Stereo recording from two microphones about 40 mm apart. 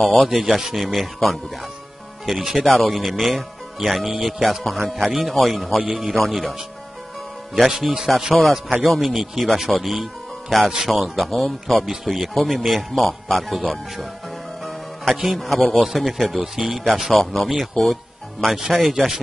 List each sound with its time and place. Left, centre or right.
0.2 s speech: centre
7.5 s speech: centre
8.4 s speech: centre
14.6 s music: centre
15.2 s speech: centre